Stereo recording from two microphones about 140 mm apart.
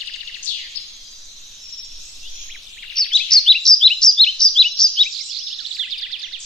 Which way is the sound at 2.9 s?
5° left (ahead or behind).